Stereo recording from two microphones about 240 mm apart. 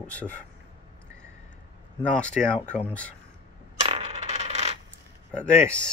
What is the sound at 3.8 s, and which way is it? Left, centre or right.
Coin, right.